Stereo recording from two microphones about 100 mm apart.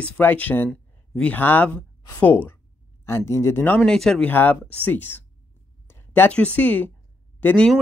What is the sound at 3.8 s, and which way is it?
Speech, 5° left (ahead or behind).